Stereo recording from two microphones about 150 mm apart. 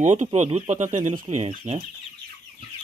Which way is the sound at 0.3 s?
40° right (ahead or behind).